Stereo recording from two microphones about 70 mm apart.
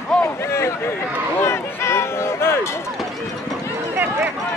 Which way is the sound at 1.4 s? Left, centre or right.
Left.